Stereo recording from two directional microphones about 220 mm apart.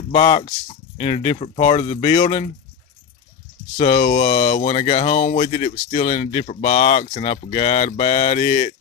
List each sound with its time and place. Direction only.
0.1 s speech: 25° left (ahead or behind)
3.7 s speech: 35° left (ahead or behind)